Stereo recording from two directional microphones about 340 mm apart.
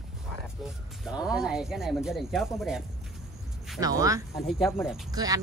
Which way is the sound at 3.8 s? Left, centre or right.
Centre.